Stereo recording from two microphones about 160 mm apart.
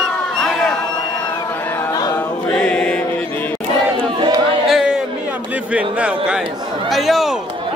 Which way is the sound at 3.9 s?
30° right (ahead or behind).